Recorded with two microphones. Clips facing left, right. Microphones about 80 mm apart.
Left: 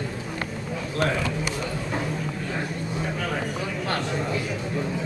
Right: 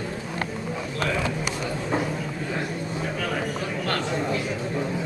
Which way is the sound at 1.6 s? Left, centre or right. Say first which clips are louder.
Right 2 dB; centre.